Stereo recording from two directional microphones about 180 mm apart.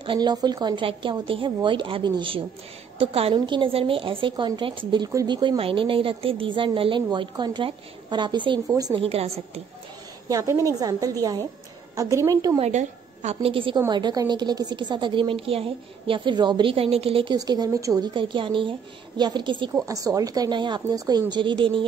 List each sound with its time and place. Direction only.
0.0 s a woman's voice: 25° right (ahead or behind)
9.0 s a woman's voice: 35° right (ahead or behind)
10.2 s a woman's voice: 15° right (ahead or behind)
12.5 s a woman's voice: 40° right (ahead or behind)